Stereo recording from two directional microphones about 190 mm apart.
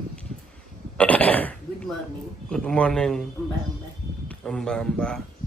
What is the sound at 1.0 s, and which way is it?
Throat clearing, 10° left (ahead or behind).